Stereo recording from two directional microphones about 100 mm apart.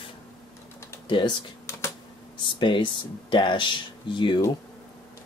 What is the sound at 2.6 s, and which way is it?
Speech, 55° left (ahead or behind).